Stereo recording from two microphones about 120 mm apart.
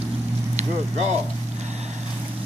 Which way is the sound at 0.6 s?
70° right (ahead or behind).